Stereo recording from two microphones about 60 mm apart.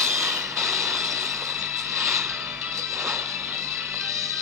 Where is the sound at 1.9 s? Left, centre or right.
Right.